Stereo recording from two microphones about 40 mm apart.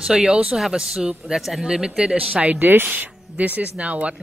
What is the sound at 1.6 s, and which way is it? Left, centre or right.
Speech, centre.